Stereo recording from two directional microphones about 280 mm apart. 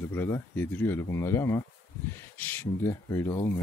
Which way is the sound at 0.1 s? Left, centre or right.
Centre.